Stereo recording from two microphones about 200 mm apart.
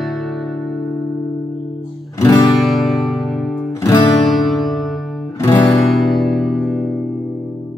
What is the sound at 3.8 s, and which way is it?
Music, 15° left (ahead or behind).